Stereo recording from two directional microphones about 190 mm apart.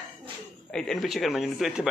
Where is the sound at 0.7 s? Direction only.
5° left (ahead or behind).